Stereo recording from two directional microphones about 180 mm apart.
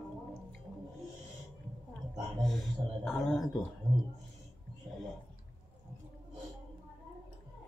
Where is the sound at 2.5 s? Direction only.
Centre (ahead or behind).